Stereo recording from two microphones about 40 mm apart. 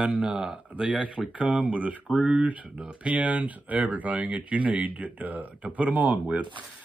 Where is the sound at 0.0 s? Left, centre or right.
Right.